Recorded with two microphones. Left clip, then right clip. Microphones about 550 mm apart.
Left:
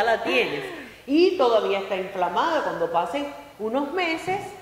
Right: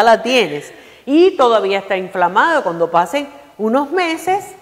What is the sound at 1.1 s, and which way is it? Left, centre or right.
A woman's voice, right.